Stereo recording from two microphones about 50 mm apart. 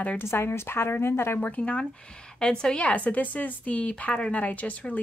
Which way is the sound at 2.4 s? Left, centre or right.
Centre.